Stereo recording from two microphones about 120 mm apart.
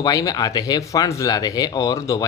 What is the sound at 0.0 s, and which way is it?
Speech, 30° left (ahead or behind).